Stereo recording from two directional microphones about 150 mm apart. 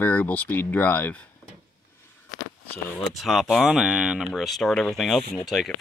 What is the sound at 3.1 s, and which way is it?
Speech, centre (ahead or behind).